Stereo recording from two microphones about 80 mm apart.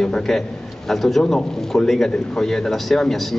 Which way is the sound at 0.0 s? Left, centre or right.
Centre.